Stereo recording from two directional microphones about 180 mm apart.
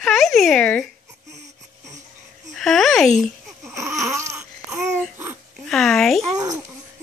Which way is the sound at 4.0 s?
15° right (ahead or behind).